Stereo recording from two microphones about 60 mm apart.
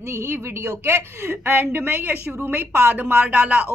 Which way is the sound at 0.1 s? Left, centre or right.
Right.